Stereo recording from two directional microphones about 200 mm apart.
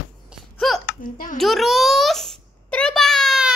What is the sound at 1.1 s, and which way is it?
Speech, 40° left (ahead or behind).